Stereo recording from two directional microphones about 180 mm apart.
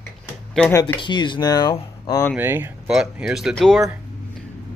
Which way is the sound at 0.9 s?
25° left (ahead or behind).